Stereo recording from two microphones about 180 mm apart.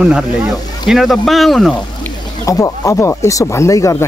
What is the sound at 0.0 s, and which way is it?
Speech, 5° right (ahead or behind).